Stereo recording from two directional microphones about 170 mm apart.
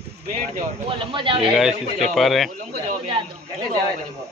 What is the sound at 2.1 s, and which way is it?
Speech, centre (ahead or behind).